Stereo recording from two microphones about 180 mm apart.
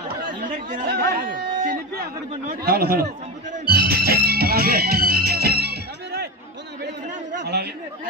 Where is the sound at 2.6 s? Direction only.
60° right (ahead or behind).